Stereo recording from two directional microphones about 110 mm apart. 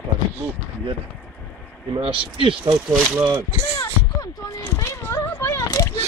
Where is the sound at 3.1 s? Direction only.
25° right (ahead or behind).